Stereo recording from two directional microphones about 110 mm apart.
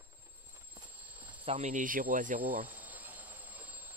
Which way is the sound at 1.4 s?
60° right (ahead or behind).